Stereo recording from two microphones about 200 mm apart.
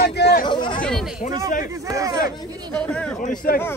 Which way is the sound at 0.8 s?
Centre (ahead or behind).